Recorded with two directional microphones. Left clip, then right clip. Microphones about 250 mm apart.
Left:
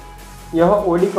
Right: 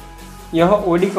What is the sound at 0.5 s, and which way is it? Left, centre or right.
Speech, right.